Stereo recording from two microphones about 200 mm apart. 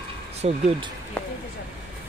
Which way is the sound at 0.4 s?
30° right (ahead or behind).